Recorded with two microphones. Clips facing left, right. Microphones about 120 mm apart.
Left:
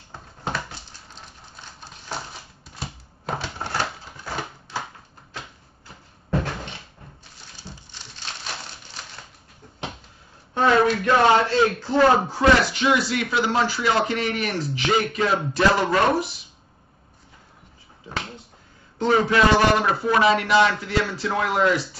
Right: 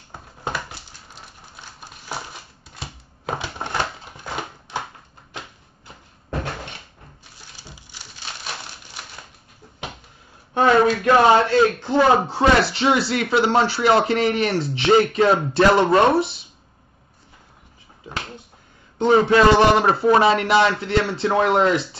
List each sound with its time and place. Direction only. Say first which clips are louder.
0.1 s dog: right 1 dB; 15° right (ahead or behind)
1.8 s crushing: right 1 dB; 10° right (ahead or behind)
3.3 s typewriter: right 1 dB; 15° right (ahead or behind)
4.4 s a sound: right 2 dB; 15° right (ahead or behind)
10.5 s speech: right 2 dB; 20° right (ahead or behind)
18.9 s speech: right 4 dB; 25° right (ahead or behind)